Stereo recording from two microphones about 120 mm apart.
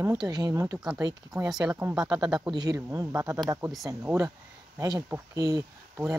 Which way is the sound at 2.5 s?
30° right (ahead or behind).